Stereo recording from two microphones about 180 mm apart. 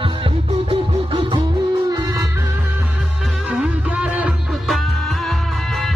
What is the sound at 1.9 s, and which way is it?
Music, 20° right (ahead or behind).